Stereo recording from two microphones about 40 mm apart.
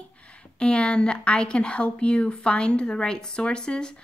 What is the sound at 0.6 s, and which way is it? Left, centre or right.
Speech, left.